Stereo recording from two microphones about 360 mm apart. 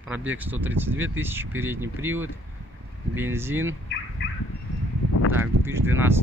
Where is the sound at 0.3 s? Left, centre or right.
Centre.